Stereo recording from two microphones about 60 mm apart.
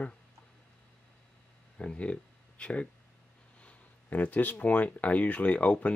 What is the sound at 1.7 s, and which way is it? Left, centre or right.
Speech, left.